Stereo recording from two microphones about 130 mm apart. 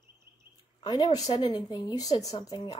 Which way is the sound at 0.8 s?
35° left (ahead or behind).